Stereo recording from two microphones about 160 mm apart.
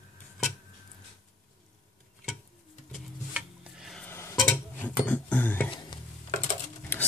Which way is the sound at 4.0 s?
10° left (ahead or behind).